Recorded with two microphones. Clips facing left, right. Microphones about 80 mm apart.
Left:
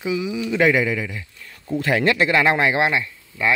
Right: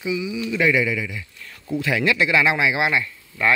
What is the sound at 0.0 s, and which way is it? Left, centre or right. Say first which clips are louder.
Speech: left 2 dB; left.